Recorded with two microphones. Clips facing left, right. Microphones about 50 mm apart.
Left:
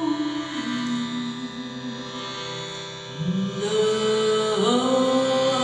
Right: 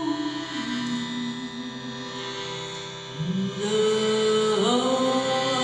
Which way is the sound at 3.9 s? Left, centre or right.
Centre.